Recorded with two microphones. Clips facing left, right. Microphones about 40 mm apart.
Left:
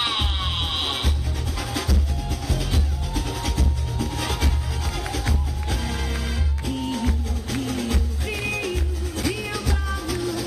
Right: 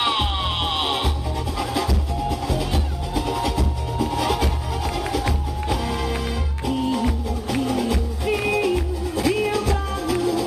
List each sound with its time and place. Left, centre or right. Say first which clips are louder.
0.0 s music: right 4 dB; centre; by 10.4 s right